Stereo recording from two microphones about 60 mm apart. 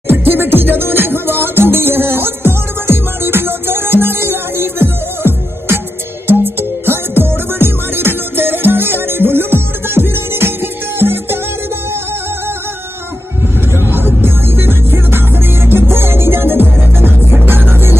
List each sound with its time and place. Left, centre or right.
0.1 s music: right
13.7 s music: right